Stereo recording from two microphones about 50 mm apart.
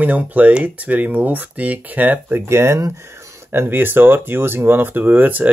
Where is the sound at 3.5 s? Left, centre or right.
Right.